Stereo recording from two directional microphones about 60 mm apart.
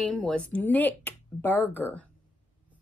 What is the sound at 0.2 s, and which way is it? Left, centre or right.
Speech, centre.